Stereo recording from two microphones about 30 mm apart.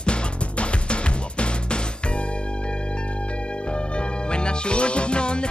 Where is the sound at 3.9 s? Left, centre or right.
Left.